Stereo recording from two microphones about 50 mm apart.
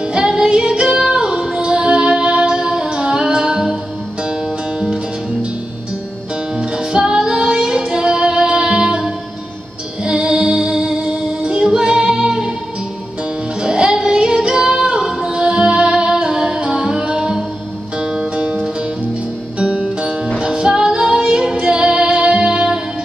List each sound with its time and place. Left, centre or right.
0.0 s music: centre
6.6 s music: centre
13.6 s music: centre
19.6 s music: centre